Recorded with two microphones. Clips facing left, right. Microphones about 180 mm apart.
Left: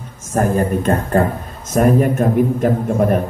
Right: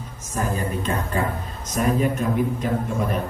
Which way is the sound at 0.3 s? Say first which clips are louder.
Left 9 dB; 55° left (ahead or behind).